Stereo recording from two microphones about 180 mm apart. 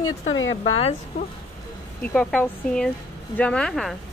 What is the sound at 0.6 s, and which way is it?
Speech, 35° left (ahead or behind).